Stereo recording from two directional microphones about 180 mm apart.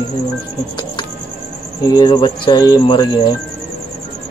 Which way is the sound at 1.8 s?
20° left (ahead or behind).